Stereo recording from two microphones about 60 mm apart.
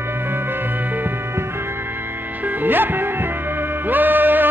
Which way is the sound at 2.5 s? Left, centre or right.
Right.